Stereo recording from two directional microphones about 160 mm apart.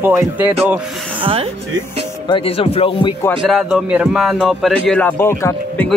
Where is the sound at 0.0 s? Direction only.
10° right (ahead or behind).